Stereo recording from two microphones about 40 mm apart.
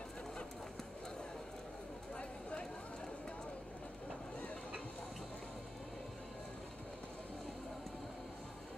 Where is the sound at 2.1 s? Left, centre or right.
Left.